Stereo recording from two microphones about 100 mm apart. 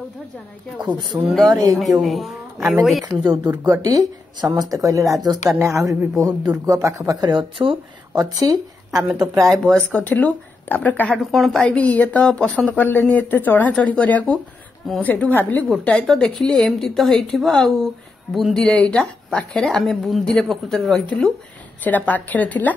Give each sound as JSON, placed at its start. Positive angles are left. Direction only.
{"t": 1.2, "sound": "a woman's voice", "side_deg": 0}
{"t": 1.5, "sound": "speech", "side_deg": -35}
{"t": 1.8, "sound": "a woman's voice", "side_deg": 0}
{"t": 3.1, "sound": "speech", "side_deg": -40}
{"t": 7.3, "sound": "speech", "side_deg": -60}
{"t": 8.2, "sound": "speech", "side_deg": -40}
{"t": 9.8, "sound": "speech", "side_deg": 15}
{"t": 11.3, "sound": "a woman's voice", "side_deg": 0}
{"t": 11.7, "sound": "a woman's voice", "side_deg": 15}
{"t": 21.8, "sound": "speech", "side_deg": 15}